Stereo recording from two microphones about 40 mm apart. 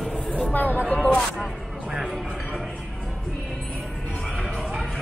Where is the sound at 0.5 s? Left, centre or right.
Left.